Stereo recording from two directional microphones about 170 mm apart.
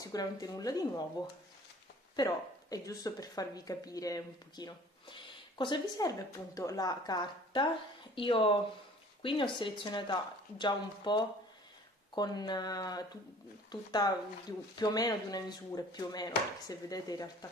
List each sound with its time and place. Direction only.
0.0 s speech: 20° left (ahead or behind)
2.1 s speech: 20° left (ahead or behind)